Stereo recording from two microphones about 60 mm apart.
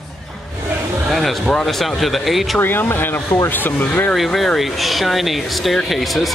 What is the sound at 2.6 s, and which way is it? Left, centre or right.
Speech, left.